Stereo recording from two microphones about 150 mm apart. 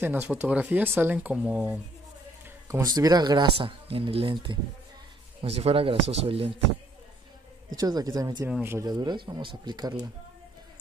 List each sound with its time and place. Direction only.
0.0 s speech: 10° right (ahead or behind)
2.7 s speech: 25° right (ahead or behind); by 6.5 s 40° right (ahead or behind)
7.7 s speech: 25° right (ahead or behind)
8.5 s speech: 10° right (ahead or behind)
8.8 s speech: 30° right (ahead or behind)